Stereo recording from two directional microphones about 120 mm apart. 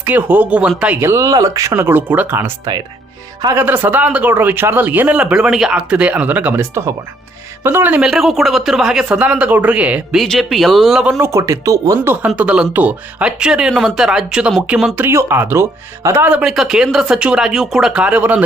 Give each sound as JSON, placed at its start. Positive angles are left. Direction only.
{"t": 0.0, "sound": "speech", "side_deg": -15}
{"t": 1.0, "sound": "speech", "side_deg": -25}
{"t": 3.5, "sound": "speech", "side_deg": -15}
{"t": 8.0, "sound": "speech", "side_deg": -5}
{"t": 10.2, "sound": "speech", "side_deg": 0}
{"t": 11.1, "sound": "speech", "side_deg": -20}
{"t": 12.4, "sound": "speech", "side_deg": -10}
{"t": 15.0, "sound": "speech", "side_deg": -20}
{"t": 16.3, "sound": "speech", "side_deg": -5}